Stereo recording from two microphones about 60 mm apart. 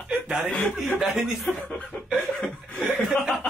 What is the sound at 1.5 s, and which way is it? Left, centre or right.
Chuckle, centre.